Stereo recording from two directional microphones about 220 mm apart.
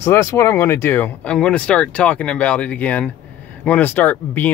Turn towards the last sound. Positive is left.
turn(degrees=5)  # may be behind; listen again after turning